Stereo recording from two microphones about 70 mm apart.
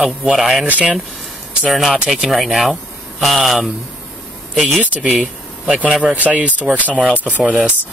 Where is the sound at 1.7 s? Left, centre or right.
Centre.